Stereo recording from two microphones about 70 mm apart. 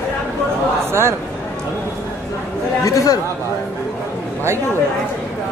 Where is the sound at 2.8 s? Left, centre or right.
Left.